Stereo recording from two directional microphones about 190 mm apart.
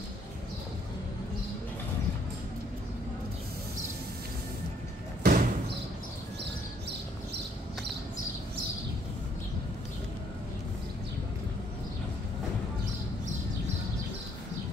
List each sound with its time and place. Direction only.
5.2 s slam: 50° right (ahead or behind)